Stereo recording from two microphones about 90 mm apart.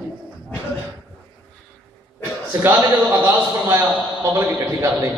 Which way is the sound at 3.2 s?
25° right (ahead or behind).